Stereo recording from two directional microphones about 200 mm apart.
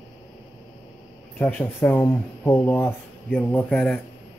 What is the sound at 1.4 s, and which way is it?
Speech, 10° left (ahead or behind).